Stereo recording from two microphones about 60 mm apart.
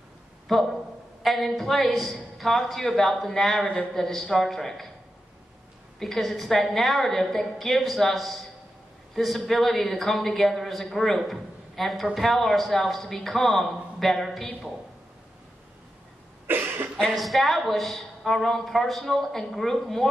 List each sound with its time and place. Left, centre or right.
0.5 s a man's voice: centre
5.9 s a man's voice: centre
16.4 s cough: right
17.1 s a man's voice: centre